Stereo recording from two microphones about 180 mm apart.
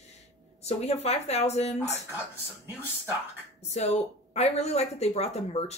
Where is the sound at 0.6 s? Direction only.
35° left (ahead or behind).